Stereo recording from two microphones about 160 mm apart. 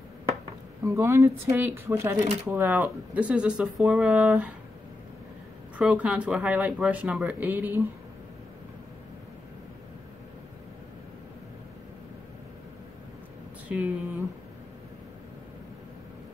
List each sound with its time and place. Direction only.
0.8 s speech: 20° right (ahead or behind)
5.8 s speech: 5° right (ahead or behind)
13.7 s speech: 10° right (ahead or behind)